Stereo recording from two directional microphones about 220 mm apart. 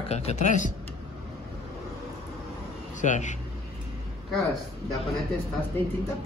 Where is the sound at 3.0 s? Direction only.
35° left (ahead or behind).